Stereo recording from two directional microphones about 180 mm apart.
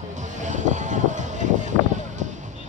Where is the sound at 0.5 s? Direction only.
40° right (ahead or behind).